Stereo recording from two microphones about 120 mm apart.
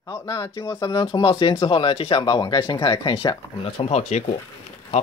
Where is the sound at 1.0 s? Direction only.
40° left (ahead or behind).